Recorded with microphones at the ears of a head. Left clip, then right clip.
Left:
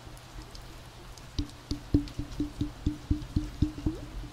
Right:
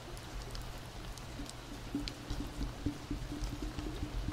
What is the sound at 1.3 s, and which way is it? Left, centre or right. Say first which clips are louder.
Music: left 7 dB; left.